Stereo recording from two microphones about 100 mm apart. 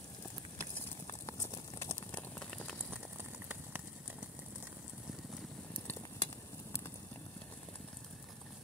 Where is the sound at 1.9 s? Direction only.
15° left (ahead or behind).